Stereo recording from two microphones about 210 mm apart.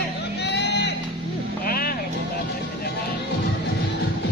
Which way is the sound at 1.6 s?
45° left (ahead or behind).